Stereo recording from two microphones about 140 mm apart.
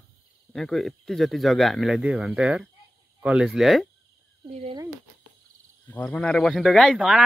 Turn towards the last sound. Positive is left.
turn(degrees=-5)  # may be behind; listen again after turning